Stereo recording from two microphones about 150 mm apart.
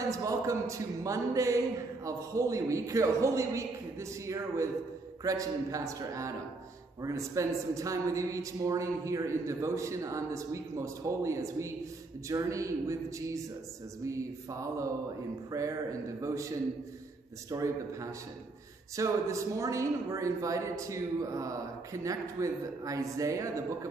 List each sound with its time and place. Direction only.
0.1 s speech: 20° right (ahead or behind)